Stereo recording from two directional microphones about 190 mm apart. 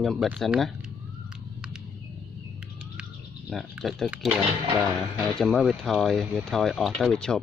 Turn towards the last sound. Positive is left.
turn(degrees=5)  # may be behind; listen again after turning